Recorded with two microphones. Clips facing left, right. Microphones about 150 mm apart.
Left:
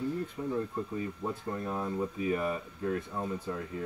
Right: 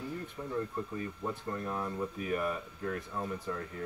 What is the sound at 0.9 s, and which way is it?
Speech, 20° left (ahead or behind).